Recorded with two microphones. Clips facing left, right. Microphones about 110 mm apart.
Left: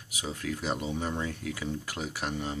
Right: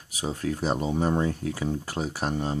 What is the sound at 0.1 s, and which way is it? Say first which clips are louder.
Speech: right 5 dB; 35° right (ahead or behind).